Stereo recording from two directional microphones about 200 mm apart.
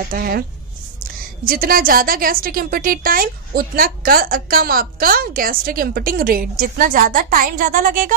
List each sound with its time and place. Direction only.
0.1 s a woman's voice: 50° right (ahead or behind)